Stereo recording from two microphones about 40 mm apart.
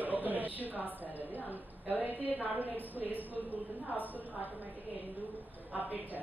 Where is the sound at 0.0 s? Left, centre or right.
Right.